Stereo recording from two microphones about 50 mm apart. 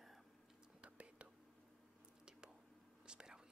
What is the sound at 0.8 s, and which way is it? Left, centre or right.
Whispering, right.